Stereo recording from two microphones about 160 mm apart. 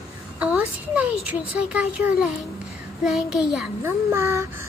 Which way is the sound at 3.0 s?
5° right (ahead or behind).